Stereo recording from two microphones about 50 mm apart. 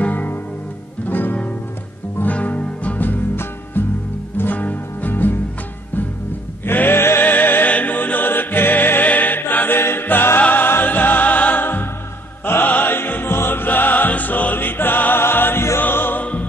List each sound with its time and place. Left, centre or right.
0.0 s music: left
6.6 s music: left
9.8 s choir: left
10.5 s music: left
11.6 s music: left
15.8 s music: left
16.2 s music: left